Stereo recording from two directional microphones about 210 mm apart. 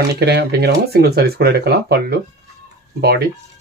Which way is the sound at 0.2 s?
50° right (ahead or behind).